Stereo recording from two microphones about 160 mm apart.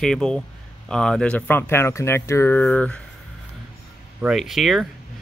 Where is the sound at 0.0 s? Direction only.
5° left (ahead or behind).